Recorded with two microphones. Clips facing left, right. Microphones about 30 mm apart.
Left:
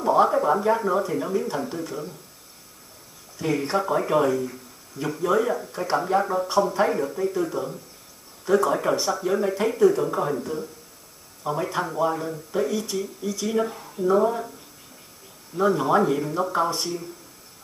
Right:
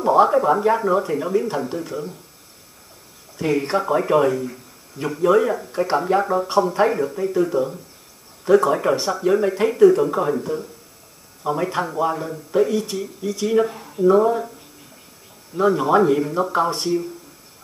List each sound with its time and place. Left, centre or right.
0.0 s speech: centre
3.7 s speech: centre
15.5 s speech: centre